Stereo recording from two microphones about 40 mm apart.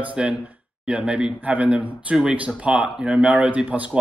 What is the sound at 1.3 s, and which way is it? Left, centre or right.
Speech, right.